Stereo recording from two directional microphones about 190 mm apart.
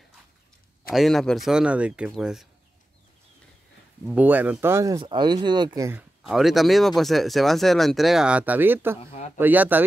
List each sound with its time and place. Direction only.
0.9 s speech: centre (ahead or behind)
4.0 s speech: 5° right (ahead or behind)
6.2 s speech: centre (ahead or behind)